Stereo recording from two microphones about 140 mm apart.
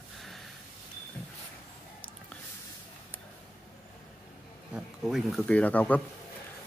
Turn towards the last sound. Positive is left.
turn(degrees=10)  # may be behind; listen again after turning